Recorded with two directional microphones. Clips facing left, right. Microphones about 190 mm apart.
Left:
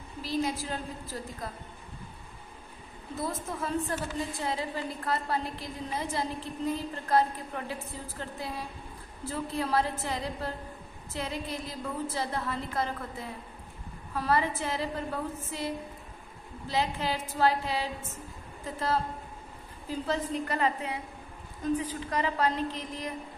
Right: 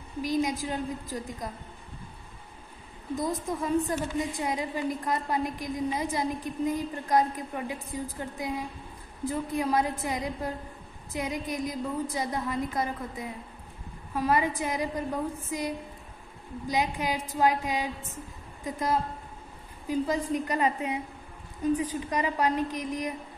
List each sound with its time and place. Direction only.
0.2 s a woman's voice: 15° right (ahead or behind)
3.2 s a woman's voice: 15° right (ahead or behind)
16.6 s a woman's voice: 15° right (ahead or behind)